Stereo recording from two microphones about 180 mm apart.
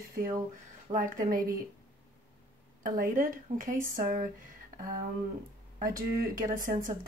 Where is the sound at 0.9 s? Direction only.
50° right (ahead or behind).